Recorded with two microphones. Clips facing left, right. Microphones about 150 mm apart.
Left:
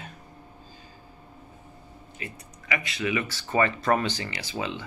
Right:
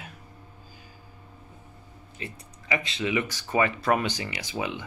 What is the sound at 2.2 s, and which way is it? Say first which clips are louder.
Speech: right 1 dB; 25° right (ahead or behind).